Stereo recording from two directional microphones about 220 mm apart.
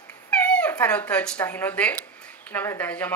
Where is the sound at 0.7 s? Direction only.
10° left (ahead or behind).